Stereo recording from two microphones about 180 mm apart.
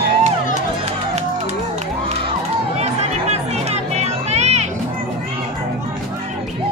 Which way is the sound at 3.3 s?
35° right (ahead or behind).